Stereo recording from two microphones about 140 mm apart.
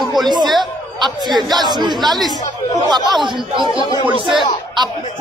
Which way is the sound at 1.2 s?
30° right (ahead or behind).